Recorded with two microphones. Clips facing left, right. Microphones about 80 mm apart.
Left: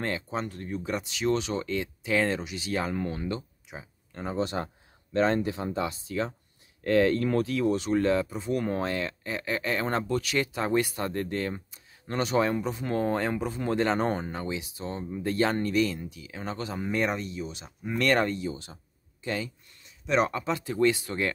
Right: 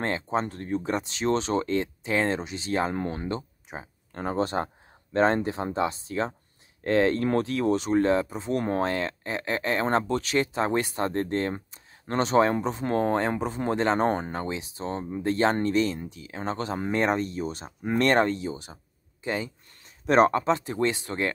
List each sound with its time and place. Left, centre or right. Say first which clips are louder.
0.0 s speech: right 4 dB; right
19.8 s speech: right 6 dB; right